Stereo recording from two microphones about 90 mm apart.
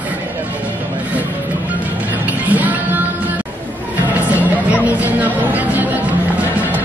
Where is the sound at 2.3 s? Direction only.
15° right (ahead or behind).